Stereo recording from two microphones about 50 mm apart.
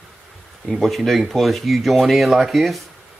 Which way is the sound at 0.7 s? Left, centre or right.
Centre.